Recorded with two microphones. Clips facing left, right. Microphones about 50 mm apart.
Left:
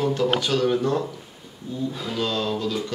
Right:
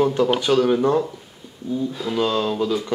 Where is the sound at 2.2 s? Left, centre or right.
Centre.